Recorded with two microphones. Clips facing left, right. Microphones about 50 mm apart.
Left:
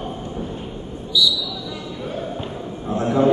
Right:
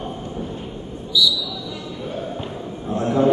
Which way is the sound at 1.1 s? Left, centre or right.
Centre.